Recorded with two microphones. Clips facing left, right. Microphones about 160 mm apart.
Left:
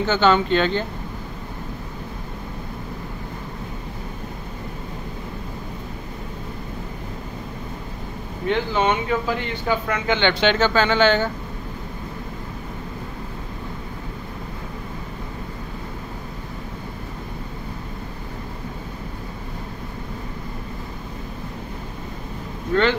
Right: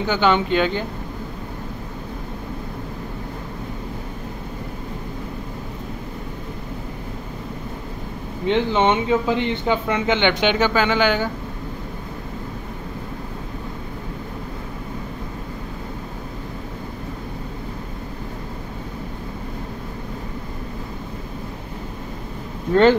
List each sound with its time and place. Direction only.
0.0 s speech: 15° right (ahead or behind)
8.5 s speech: 25° right (ahead or behind)